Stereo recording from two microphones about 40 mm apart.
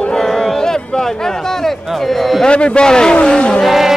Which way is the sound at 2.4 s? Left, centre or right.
Left.